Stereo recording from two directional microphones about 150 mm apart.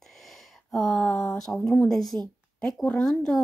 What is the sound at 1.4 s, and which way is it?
Speech, 5° left (ahead or behind).